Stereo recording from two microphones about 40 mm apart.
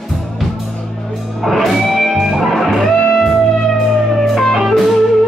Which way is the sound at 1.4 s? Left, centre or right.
Centre.